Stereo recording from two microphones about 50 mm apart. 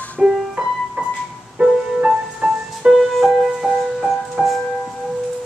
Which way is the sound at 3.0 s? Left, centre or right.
Centre.